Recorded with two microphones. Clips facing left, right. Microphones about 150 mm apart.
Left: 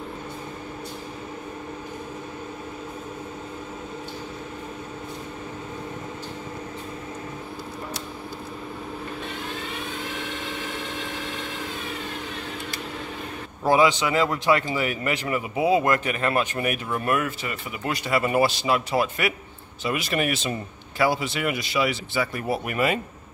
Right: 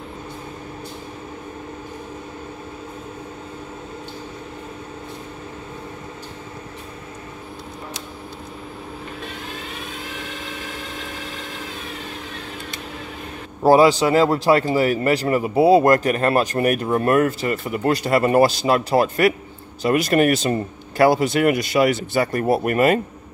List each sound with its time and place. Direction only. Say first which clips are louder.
13.6 s speech: right 6 dB; 35° right (ahead or behind)